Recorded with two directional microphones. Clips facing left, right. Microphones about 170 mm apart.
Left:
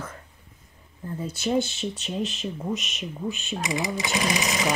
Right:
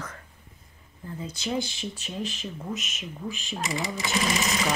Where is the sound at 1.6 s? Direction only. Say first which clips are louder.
Left 5 dB; 15° right (ahead or behind).